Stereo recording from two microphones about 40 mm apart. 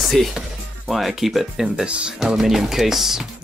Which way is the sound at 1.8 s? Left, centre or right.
Right.